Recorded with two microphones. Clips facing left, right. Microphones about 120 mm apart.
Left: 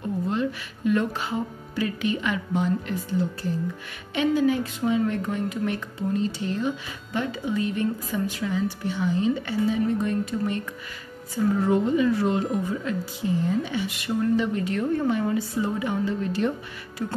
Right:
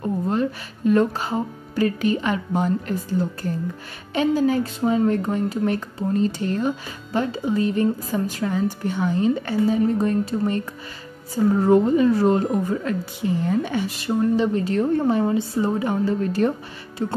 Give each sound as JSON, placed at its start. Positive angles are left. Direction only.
{"t": 0.3, "sound": "speech", "side_deg": -40}
{"t": 7.1, "sound": "speech", "side_deg": -35}
{"t": 13.8, "sound": "speech", "side_deg": -35}
{"t": 17.0, "sound": "speech", "side_deg": -30}